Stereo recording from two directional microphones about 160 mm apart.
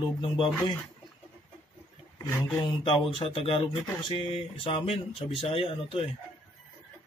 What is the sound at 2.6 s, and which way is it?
Speech, 35° left (ahead or behind).